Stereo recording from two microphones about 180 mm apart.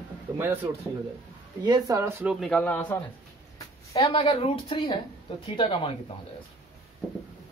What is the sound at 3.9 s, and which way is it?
A woman's voice, 30° left (ahead or behind).